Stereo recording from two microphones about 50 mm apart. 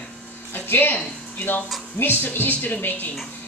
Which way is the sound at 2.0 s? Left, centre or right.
Left.